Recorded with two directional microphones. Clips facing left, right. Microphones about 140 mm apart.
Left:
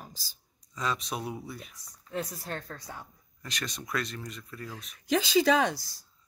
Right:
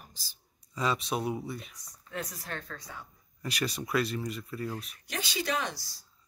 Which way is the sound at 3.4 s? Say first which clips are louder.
Right 5 dB; 10° right (ahead or behind).